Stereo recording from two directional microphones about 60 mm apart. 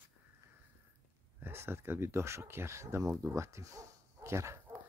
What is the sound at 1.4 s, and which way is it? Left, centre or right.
Speech, right.